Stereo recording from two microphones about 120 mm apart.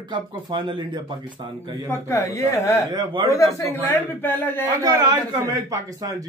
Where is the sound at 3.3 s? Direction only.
20° left (ahead or behind).